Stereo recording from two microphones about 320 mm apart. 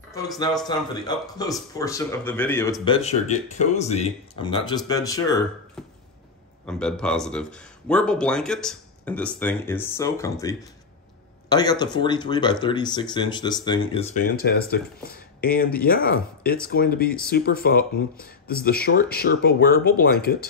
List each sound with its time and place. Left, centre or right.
0.7 s speech: centre
5.8 s a sound: centre
6.6 s speech: centre; by 20.4 s left